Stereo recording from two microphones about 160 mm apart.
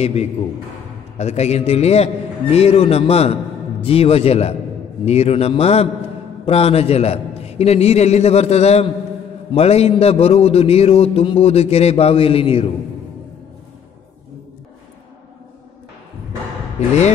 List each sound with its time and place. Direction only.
0.0 s a man's voice: 40° left (ahead or behind)
16.8 s a man's voice: 45° left (ahead or behind)